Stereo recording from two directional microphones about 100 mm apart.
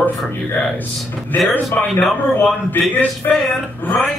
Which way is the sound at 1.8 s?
5° left (ahead or behind).